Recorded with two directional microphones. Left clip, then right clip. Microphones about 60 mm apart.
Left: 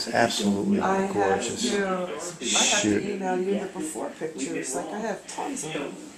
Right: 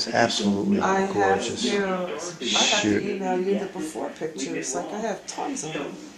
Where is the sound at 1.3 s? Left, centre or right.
Centre.